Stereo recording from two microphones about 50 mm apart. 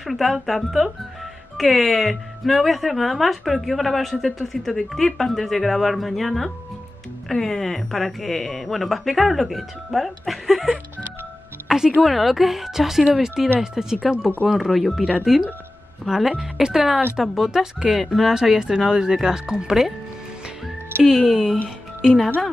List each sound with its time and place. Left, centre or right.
0.0 s speech: centre
11.6 s music: centre
12.0 s speech: centre
21.0 s speech: centre
21.6 s music: centre